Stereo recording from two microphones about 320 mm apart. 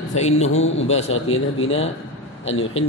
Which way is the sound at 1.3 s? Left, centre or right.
Left.